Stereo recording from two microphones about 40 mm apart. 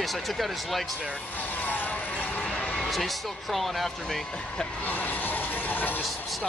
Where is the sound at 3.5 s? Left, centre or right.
Centre.